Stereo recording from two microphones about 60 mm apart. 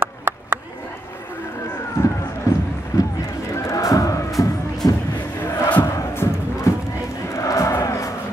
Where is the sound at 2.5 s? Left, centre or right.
Left.